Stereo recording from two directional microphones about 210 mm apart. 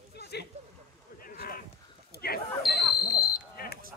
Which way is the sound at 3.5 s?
45° left (ahead or behind).